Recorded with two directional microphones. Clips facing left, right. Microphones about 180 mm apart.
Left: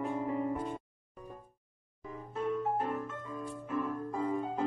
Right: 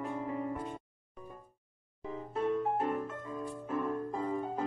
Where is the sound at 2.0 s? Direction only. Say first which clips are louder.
Right 2 dB; 25° right (ahead or behind).